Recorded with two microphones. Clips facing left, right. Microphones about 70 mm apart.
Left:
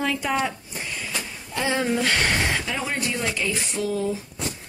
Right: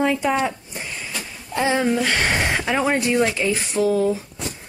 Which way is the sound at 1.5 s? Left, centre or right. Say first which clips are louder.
Right 5 dB; centre.